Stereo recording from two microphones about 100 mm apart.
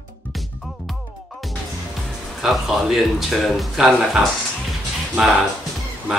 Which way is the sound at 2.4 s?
Centre (ahead or behind).